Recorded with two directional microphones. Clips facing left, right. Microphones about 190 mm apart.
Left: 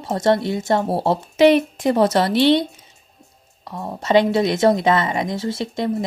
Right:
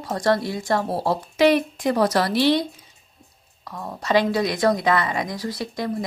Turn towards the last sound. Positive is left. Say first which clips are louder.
# left 4 dB
turn(degrees=25)  # may be behind; listen again after turning